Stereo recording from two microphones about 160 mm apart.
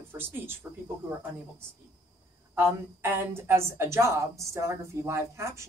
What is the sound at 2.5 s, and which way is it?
Speech, 15° right (ahead or behind).